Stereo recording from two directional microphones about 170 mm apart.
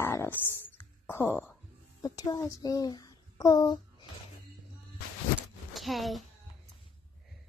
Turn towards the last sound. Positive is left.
turn(degrees=0)  # may be behind; listen again after turning